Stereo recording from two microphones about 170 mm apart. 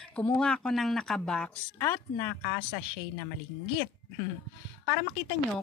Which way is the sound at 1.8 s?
15° left (ahead or behind).